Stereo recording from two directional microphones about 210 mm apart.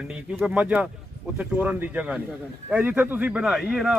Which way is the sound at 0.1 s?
5° right (ahead or behind).